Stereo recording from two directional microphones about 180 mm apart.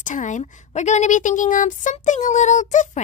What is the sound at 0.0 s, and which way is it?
A woman's voice, 45° left (ahead or behind).